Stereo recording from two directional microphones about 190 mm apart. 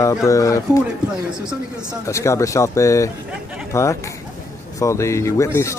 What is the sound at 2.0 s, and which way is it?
Speech, 15° left (ahead or behind).